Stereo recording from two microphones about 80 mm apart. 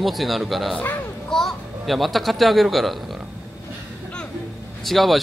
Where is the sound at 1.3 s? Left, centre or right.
Centre.